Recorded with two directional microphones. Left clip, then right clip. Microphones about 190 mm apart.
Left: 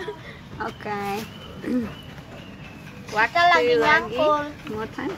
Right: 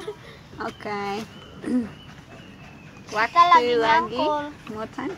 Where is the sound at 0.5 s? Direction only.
35° right (ahead or behind).